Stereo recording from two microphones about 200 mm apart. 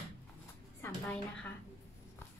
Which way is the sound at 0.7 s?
5° left (ahead or behind).